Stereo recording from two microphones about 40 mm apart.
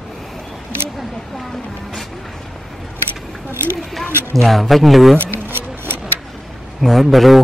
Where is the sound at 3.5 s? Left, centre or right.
Right.